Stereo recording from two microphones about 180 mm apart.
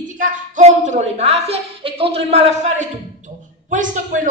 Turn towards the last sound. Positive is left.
turn(degrees=-45)  # may be behind; listen again after turning